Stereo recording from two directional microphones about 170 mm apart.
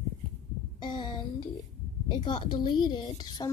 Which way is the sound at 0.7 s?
30° left (ahead or behind).